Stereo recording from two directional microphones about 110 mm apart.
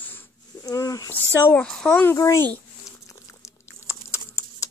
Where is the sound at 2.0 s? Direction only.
20° left (ahead or behind).